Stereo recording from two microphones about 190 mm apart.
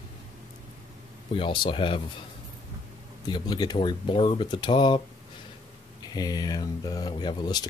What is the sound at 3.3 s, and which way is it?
Speech, 20° left (ahead or behind).